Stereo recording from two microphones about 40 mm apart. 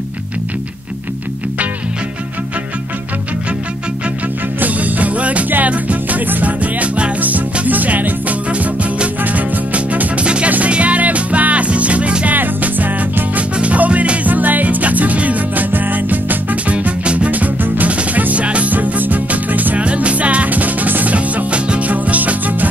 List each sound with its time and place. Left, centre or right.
4.6 s music: right
10.2 s music: right
12.3 s music: right
13.6 s music: right
16.7 s music: right
17.3 s music: right
19.8 s music: right
21.5 s music: right